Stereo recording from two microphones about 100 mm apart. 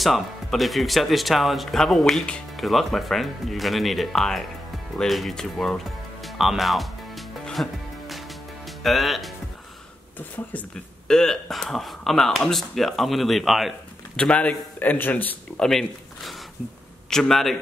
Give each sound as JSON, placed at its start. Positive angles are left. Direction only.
{"t": 0.0, "sound": "speech", "side_deg": 0}
{"t": 4.9, "sound": "music", "side_deg": 0}
{"t": 8.8, "sound": "speech", "side_deg": 0}
{"t": 10.1, "sound": "speech", "side_deg": 15}
{"t": 11.1, "sound": "speech", "side_deg": 5}
{"t": 14.1, "sound": "speech", "side_deg": 10}
{"t": 15.6, "sound": "speech", "side_deg": 5}